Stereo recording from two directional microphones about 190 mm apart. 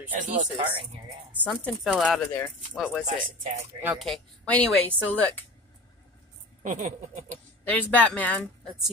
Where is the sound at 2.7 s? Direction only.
Centre (ahead or behind).